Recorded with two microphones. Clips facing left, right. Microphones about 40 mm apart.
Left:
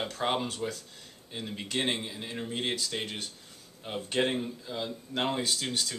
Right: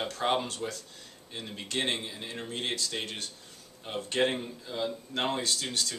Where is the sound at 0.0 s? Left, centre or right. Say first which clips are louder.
Right 1 dB; centre.